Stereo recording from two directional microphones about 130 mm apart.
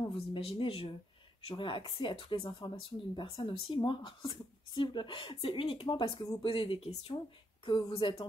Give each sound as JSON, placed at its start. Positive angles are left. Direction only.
{"t": 0.3, "sound": "speech", "side_deg": 45}
{"t": 1.5, "sound": "speech", "side_deg": 40}